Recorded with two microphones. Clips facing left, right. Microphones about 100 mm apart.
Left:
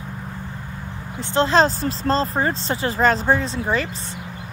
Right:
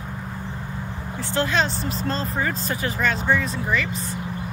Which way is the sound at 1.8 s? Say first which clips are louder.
Left 5 dB; 30° left (ahead or behind).